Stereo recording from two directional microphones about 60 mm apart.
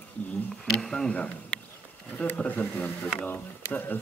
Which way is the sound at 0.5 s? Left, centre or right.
Centre.